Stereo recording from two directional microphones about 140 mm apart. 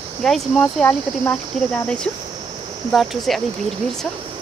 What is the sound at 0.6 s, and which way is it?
Speech, 15° left (ahead or behind).